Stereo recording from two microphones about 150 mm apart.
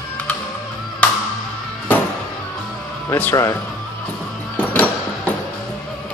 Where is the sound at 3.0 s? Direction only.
10° left (ahead or behind).